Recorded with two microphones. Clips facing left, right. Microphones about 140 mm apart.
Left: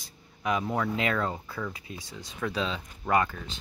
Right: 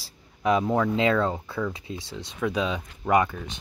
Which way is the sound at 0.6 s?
20° right (ahead or behind).